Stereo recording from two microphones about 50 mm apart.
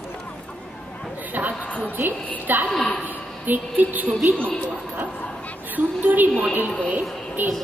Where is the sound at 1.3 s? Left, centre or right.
Right.